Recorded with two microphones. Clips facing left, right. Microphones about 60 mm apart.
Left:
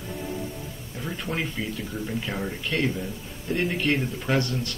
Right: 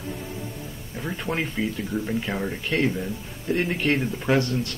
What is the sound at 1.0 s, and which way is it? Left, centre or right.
A man's voice, centre.